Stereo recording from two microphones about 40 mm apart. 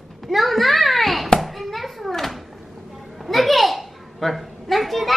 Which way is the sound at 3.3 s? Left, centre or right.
Centre.